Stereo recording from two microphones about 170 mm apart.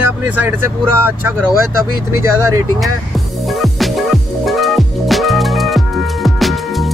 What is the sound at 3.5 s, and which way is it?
Music, centre (ahead or behind).